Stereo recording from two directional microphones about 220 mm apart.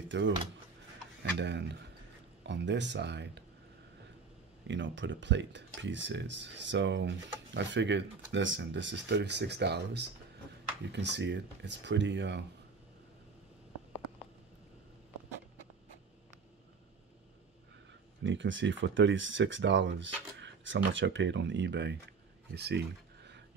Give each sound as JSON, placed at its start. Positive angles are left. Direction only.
{"t": 0.1, "sound": "speech", "side_deg": -55}
{"t": 1.4, "sound": "speech", "side_deg": -50}
{"t": 4.6, "sound": "speech", "side_deg": -55}
{"t": 18.2, "sound": "speech", "side_deg": -55}
{"t": 22.5, "sound": "a sound", "side_deg": -50}